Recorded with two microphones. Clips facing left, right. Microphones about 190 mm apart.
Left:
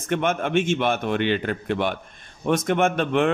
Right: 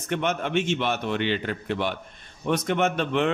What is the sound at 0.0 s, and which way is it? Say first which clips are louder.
A man's voice: left 3 dB; 50° left (ahead or behind).